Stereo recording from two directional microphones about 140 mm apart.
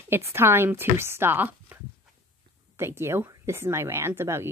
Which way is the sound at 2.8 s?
20° right (ahead or behind).